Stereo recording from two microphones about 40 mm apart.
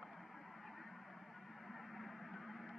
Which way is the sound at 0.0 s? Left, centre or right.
Centre.